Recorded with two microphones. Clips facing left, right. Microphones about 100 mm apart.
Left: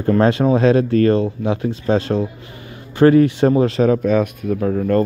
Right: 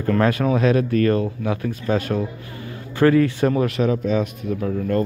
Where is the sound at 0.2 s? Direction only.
25° left (ahead or behind).